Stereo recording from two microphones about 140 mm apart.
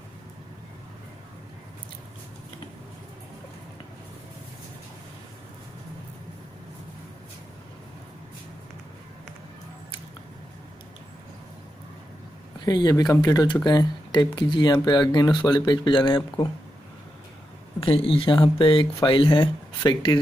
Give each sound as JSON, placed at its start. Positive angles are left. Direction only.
{"t": 12.6, "sound": "speech", "side_deg": 30}
{"t": 17.7, "sound": "speech", "side_deg": 40}